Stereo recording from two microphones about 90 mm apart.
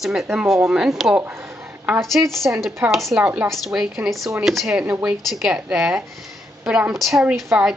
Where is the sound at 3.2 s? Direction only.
15° right (ahead or behind).